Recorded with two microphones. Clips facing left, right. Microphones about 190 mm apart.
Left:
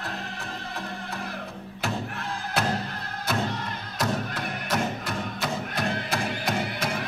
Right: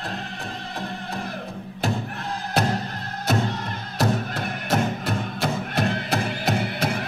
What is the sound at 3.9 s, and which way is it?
Music, 45° right (ahead or behind).